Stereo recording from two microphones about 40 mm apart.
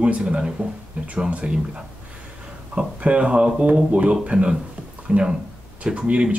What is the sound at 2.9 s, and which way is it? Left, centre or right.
Speech, right.